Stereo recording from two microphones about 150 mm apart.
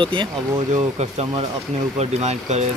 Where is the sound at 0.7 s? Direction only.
45° right (ahead or behind).